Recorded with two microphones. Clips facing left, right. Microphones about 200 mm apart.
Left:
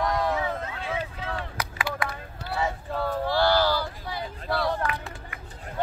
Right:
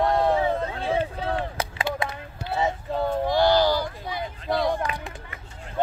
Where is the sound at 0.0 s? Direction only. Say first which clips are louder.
Right 5 dB; 30° right (ahead or behind).